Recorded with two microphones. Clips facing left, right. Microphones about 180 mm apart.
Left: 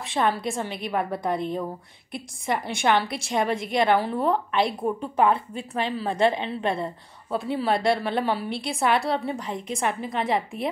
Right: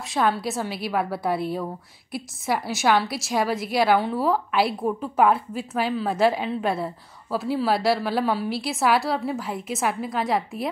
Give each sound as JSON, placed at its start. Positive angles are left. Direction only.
{"t": 0.0, "sound": "a woman's voice", "side_deg": 0}